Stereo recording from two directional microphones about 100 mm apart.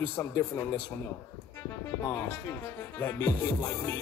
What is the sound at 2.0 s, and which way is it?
Music, 25° left (ahead or behind).